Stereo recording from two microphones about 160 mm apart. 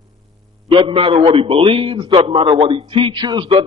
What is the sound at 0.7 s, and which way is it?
A man's voice, 30° right (ahead or behind).